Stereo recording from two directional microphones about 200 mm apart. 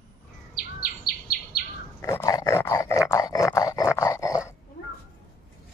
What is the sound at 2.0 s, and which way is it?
Dog, 15° left (ahead or behind).